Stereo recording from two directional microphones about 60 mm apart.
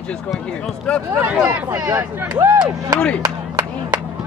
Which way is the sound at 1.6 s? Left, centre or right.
Right.